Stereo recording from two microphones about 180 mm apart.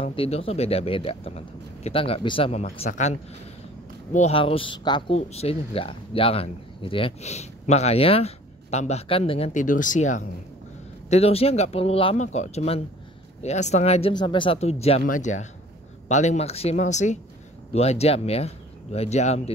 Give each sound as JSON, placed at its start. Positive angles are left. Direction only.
{"t": 0.0, "sound": "speech", "side_deg": 30}
{"t": 2.8, "sound": "speech", "side_deg": 45}
{"t": 14.1, "sound": "speech", "side_deg": 25}